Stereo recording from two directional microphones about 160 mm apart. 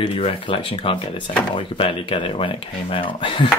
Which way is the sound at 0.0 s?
35° left (ahead or behind).